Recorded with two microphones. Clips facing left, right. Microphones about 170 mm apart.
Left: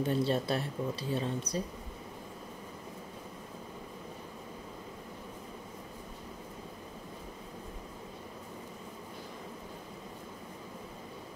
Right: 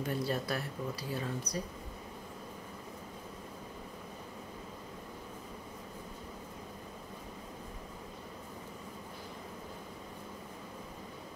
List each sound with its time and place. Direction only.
0.0 s speech: 25° left (ahead or behind)